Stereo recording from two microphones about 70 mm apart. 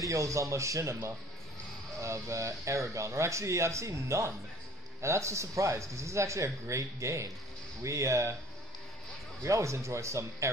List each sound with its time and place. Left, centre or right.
0.0 s speech: right
9.4 s speech: right